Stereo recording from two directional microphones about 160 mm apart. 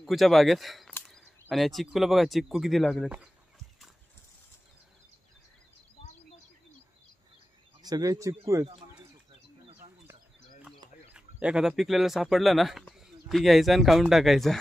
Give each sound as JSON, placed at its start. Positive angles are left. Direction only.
{"t": 0.0, "sound": "speech", "side_deg": 0}
{"t": 7.8, "sound": "speech", "side_deg": -25}
{"t": 11.1, "sound": "speech", "side_deg": -5}